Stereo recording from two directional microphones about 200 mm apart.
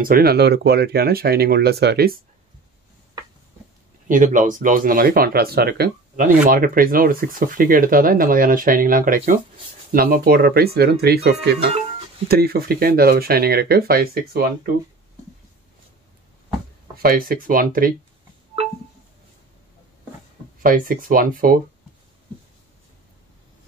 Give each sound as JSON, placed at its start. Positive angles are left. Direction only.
{"t": 0.0, "sound": "speech", "side_deg": -50}
{"t": 4.1, "sound": "speech", "side_deg": -40}
{"t": 17.0, "sound": "speech", "side_deg": -45}
{"t": 20.6, "sound": "speech", "side_deg": -45}